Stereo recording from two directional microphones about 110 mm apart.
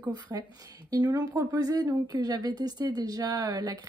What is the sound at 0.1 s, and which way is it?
A woman's voice, 35° right (ahead or behind).